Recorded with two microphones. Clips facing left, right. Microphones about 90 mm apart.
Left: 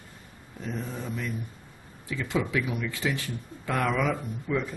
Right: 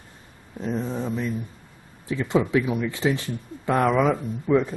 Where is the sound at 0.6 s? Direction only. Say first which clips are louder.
Right 7 dB; 25° right (ahead or behind).